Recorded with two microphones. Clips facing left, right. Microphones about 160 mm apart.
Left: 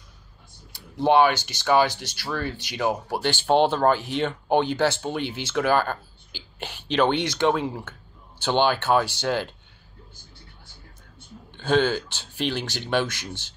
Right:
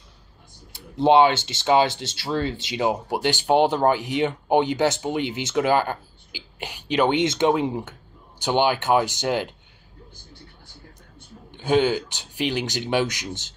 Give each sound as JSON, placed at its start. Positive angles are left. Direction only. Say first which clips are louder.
{"t": 0.7, "sound": "speech", "louder": "right 2 dB", "side_deg": -20}
{"t": 11.5, "sound": "speech", "louder": "right 2 dB", "side_deg": -15}